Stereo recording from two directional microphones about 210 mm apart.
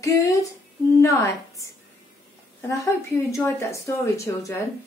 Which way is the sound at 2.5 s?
15° left (ahead or behind).